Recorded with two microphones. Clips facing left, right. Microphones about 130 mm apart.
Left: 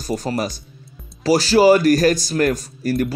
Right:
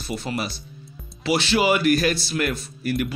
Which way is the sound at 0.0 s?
40° left (ahead or behind).